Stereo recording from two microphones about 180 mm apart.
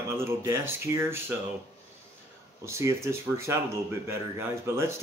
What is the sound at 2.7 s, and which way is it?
Speech, 15° right (ahead or behind).